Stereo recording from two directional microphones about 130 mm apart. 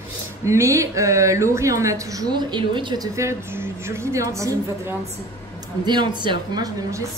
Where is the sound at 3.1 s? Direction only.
20° right (ahead or behind).